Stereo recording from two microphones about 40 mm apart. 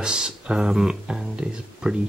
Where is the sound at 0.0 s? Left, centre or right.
Centre.